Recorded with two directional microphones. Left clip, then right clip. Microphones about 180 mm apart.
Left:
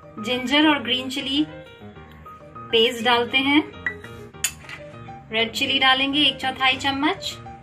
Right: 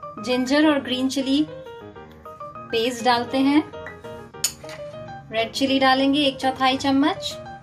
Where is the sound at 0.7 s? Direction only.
40° right (ahead or behind).